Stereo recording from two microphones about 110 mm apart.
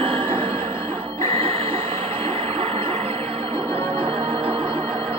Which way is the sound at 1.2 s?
55° right (ahead or behind).